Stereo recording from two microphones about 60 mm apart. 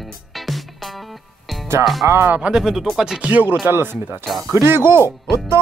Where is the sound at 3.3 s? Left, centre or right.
Right.